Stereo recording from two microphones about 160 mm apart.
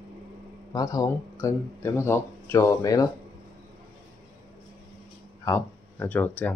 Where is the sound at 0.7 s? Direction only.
25° left (ahead or behind).